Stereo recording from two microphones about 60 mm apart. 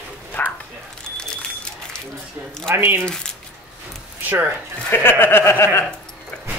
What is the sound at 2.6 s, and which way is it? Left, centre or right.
Speech, right.